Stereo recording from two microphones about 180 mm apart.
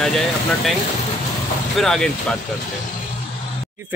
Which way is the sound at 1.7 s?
5° left (ahead or behind).